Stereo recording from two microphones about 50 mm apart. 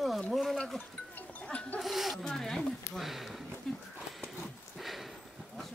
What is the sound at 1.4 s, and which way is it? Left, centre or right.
Goat, left.